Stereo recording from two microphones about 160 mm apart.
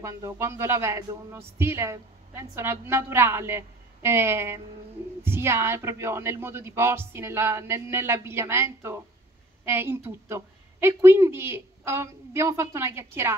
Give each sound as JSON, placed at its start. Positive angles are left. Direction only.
{"t": 0.0, "sound": "a woman's voice", "side_deg": -15}